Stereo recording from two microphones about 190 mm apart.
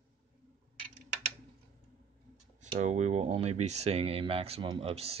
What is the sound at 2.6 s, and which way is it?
Speech, 40° right (ahead or behind).